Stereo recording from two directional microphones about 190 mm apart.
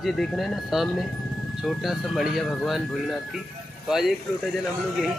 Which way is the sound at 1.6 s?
Centre (ahead or behind).